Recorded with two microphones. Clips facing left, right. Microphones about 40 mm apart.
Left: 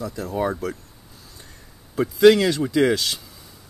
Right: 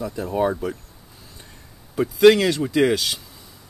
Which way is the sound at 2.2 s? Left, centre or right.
Centre.